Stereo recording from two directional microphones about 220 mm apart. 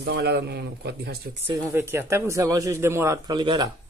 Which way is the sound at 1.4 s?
15° right (ahead or behind).